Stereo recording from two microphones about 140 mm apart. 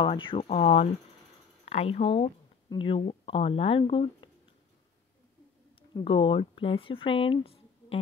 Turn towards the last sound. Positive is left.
turn(degrees=45)  # may be behind; listen again after turning